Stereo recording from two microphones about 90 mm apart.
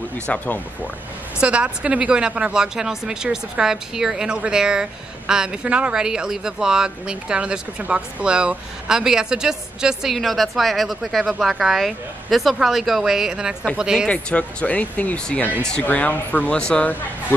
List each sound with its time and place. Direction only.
0.3 s speech: 15° left (ahead or behind)
1.4 s speech: 10° right (ahead or behind)
14.0 s speech: 15° left (ahead or behind)